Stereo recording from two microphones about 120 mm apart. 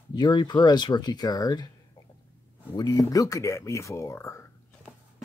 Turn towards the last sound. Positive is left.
turn(degrees=20)  # may be behind; listen again after turning